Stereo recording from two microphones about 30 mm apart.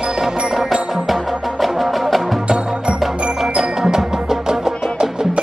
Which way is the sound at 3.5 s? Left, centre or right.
Right.